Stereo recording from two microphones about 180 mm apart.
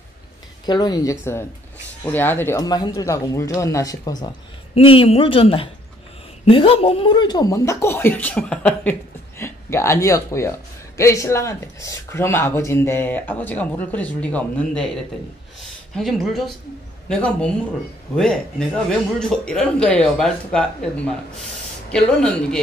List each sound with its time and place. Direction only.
0.7 s speech: 20° left (ahead or behind)
2.0 s a man's voice: 10° left (ahead or behind)